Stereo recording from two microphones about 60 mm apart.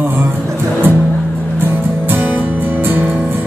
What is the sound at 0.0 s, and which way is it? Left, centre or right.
Music, right.